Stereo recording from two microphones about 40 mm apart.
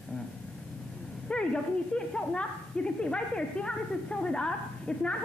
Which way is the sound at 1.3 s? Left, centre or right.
Left.